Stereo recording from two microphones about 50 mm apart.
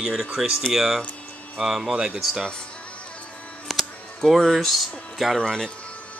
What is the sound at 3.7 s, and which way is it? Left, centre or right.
Camera, centre.